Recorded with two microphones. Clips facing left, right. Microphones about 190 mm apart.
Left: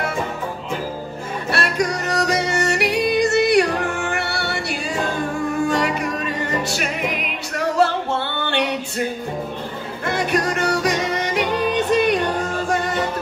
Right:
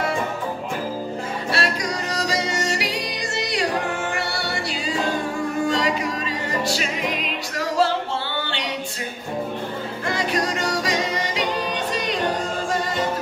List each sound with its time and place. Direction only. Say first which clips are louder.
1.5 s yodeling: left 4 dB; 60° left (ahead or behind)
4.2 s music: left 2 dB; 60° left (ahead or behind)
10.0 s music: left 4 dB; 55° left (ahead or behind)